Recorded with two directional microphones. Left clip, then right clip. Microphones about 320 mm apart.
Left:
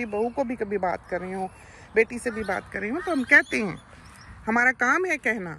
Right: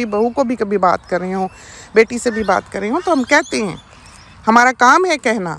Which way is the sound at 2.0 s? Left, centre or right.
Centre.